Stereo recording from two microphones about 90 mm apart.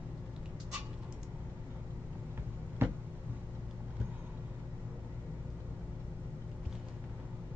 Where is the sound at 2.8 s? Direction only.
25° right (ahead or behind).